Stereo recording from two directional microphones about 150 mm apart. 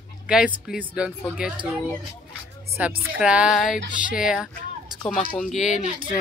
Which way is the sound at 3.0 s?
5° right (ahead or behind).